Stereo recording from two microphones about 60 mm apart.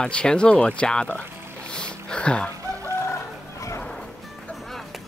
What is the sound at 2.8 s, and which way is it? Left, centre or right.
Chicken, left.